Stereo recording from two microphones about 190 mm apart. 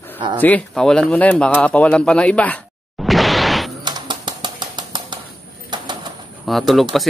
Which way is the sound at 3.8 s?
25° right (ahead or behind).